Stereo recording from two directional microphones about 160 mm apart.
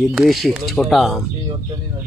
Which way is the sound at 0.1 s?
Centre (ahead or behind).